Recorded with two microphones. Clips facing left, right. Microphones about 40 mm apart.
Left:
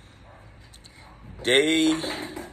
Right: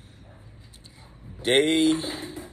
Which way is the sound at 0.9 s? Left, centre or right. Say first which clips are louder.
Left 2 dB; left.